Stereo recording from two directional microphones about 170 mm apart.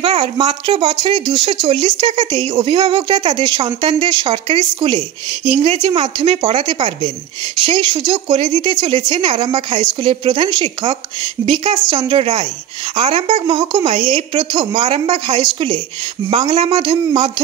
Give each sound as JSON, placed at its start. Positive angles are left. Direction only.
{"t": 0.0, "sound": "speech", "side_deg": -35}